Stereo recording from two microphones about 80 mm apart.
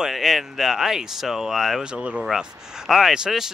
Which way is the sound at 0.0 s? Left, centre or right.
Centre.